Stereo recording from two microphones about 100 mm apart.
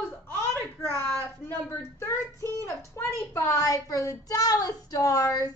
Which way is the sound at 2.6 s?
25° left (ahead or behind).